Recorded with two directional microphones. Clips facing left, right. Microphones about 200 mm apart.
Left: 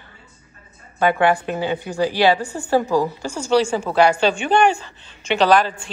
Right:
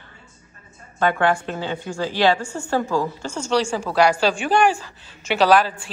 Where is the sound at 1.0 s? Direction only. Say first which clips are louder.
Left 2 dB; 15° left (ahead or behind).